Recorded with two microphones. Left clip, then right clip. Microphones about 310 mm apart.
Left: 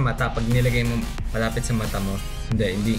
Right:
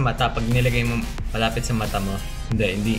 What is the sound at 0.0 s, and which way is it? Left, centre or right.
Speech, centre.